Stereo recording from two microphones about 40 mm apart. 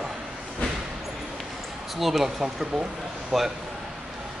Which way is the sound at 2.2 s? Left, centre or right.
Centre.